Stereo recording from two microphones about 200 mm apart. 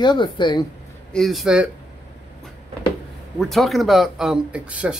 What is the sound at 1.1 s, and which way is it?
Speech, centre (ahead or behind).